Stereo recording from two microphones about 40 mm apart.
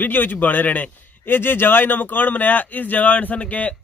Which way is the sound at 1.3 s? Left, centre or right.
Left.